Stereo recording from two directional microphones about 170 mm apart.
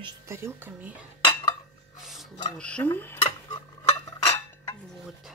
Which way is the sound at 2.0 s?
Centre (ahead or behind).